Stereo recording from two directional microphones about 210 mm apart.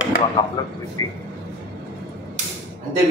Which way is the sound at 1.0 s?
15° left (ahead or behind).